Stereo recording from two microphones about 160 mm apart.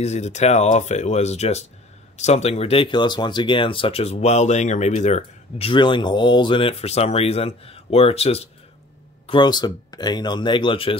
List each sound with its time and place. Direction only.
0.0 s speech: 45° left (ahead or behind)
9.3 s speech: 25° left (ahead or behind)